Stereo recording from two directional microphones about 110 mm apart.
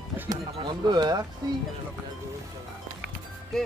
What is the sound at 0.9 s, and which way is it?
Speech, 40° right (ahead or behind).